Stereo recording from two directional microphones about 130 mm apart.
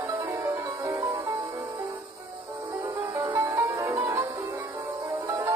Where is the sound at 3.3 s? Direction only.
20° right (ahead or behind).